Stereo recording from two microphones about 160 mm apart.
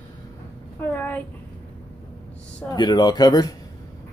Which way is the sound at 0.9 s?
10° left (ahead or behind).